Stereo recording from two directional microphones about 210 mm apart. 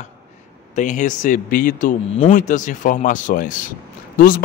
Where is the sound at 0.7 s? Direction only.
35° left (ahead or behind).